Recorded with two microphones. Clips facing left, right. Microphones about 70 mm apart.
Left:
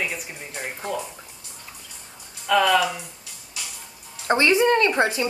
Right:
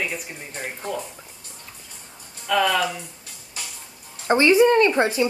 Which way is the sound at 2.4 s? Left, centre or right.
Centre.